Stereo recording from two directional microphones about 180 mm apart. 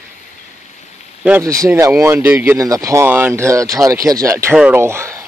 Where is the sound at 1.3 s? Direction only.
15° right (ahead or behind).